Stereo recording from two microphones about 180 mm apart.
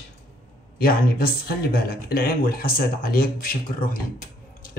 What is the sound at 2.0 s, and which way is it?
Speech, 55° left (ahead or behind).